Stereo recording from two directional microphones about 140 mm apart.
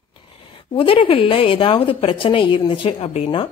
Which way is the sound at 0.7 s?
40° left (ahead or behind).